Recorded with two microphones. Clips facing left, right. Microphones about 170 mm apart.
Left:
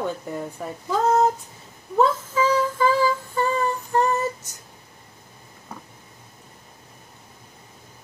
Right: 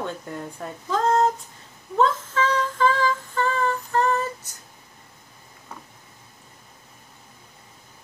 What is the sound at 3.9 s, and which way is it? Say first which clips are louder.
Female singing: left 2 dB; 15° left (ahead or behind).